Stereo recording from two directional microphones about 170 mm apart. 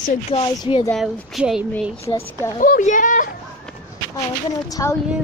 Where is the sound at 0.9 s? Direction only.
Centre (ahead or behind).